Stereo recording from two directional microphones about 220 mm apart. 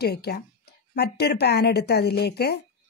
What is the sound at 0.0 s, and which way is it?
Speech, 45° left (ahead or behind).